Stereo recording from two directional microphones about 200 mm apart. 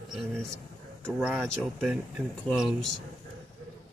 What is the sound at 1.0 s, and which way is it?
Speech, 5° right (ahead or behind).